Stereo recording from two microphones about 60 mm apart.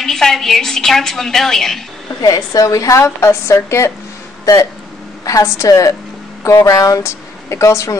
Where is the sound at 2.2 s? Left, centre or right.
Left.